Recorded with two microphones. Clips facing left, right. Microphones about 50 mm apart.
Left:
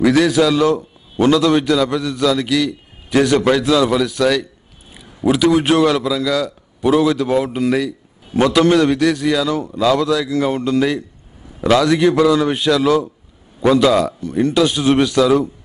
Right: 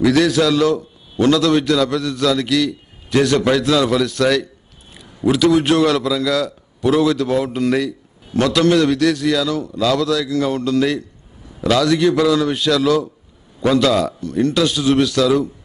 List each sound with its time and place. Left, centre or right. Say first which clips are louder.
0.0 s a man's voice: left 1 dB; centre
5.2 s a man's voice: even; centre
6.8 s a man's voice: left 1 dB; centre
9.5 s a man's voice: left 2 dB; left